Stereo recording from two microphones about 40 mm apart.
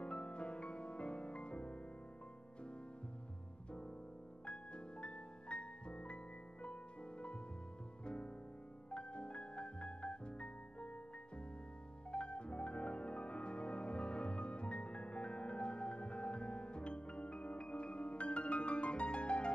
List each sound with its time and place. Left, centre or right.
0.0 s music: left
4.5 s music: left
12.1 s music: left